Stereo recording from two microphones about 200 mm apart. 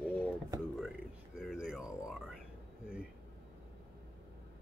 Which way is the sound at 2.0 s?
5° right (ahead or behind).